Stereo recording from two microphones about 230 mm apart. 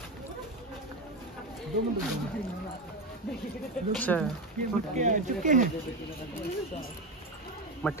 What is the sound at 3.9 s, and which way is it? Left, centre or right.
Speech, centre.